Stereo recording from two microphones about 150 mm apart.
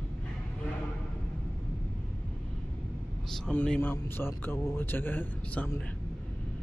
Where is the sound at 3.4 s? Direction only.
5° left (ahead or behind).